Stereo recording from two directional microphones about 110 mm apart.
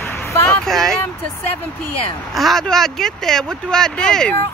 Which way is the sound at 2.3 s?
Centre (ahead or behind).